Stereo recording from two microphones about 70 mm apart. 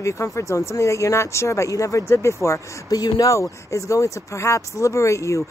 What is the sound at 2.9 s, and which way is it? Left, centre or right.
Speech, left.